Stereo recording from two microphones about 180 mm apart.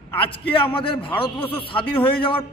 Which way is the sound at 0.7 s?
30° left (ahead or behind).